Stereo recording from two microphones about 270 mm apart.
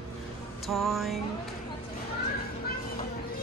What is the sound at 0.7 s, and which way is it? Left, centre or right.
Speech, centre.